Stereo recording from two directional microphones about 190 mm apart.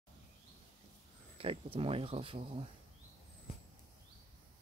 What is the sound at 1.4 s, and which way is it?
Speech, 30° right (ahead or behind).